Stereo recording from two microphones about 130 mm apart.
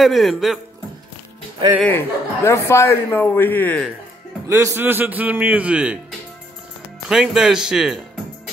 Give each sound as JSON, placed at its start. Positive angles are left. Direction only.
{"t": 0.0, "sound": "speech", "side_deg": 0}
{"t": 1.8, "sound": "a man's voice", "side_deg": 15}
{"t": 4.5, "sound": "a man's voice", "side_deg": -20}
{"t": 7.1, "sound": "speech", "side_deg": -5}